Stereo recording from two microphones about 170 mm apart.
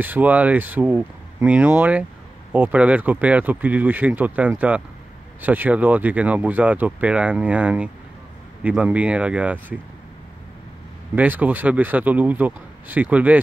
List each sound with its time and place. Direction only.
0.0 s speech: 10° right (ahead or behind)
11.1 s speech: 10° right (ahead or behind)